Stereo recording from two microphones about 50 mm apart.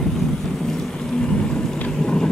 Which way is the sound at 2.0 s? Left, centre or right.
Centre.